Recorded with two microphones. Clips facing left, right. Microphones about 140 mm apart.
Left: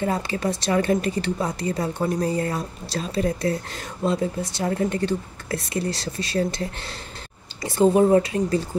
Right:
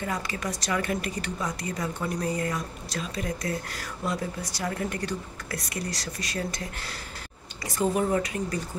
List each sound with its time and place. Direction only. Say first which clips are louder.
0.0 s speech: left 7 dB; 30° left (ahead or behind)